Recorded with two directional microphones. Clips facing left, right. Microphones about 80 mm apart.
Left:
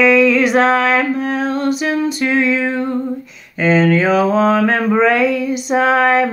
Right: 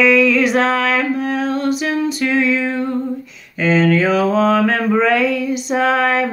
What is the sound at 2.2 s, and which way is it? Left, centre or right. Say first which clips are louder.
Music: left 1 dB; left.